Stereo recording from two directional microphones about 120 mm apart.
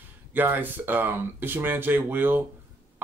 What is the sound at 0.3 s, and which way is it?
Speech, 15° right (ahead or behind).